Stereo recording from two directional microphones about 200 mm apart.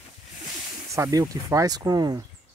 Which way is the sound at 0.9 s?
15° right (ahead or behind).